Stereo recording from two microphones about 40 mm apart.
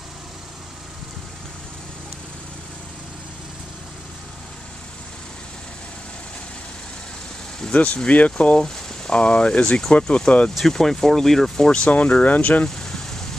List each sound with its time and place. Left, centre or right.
7.7 s speech: left
8.5 s a sound: centre
9.2 s speech: left
10.6 s speech: centre
11.9 s speech: left
12.6 s vehicle: centre